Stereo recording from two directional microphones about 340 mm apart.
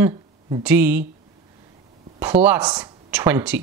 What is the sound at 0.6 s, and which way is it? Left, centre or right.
Speech, centre.